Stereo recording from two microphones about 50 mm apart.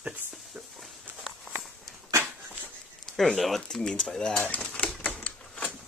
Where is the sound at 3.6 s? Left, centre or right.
Centre.